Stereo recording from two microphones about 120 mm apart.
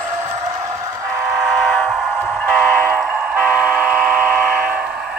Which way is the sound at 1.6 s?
Centre (ahead or behind).